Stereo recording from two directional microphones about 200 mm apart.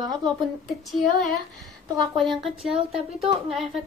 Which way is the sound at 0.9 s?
Centre (ahead or behind).